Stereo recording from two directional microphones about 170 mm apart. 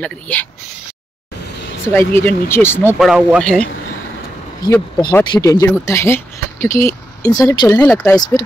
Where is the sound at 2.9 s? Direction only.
5° right (ahead or behind).